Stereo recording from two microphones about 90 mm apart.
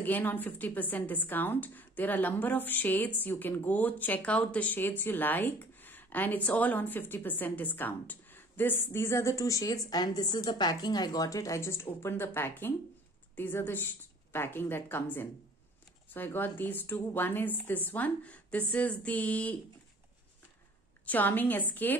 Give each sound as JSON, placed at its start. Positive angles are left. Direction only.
{"t": 0.0, "sound": "a woman's voice", "side_deg": 20}
{"t": 21.0, "sound": "speech", "side_deg": 20}